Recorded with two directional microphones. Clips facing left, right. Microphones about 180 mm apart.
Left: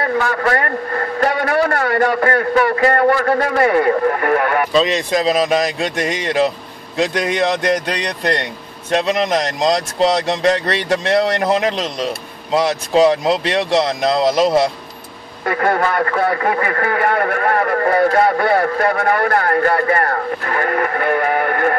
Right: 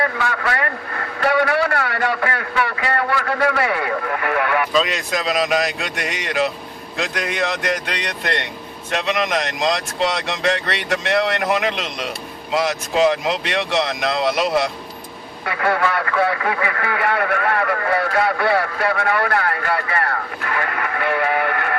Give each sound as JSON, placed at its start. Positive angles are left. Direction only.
{"t": 0.0, "sound": "a man's voice", "side_deg": 40}